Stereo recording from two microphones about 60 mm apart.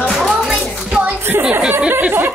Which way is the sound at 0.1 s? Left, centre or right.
Centre.